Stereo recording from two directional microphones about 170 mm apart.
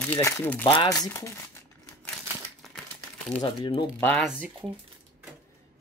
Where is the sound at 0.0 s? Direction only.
10° left (ahead or behind).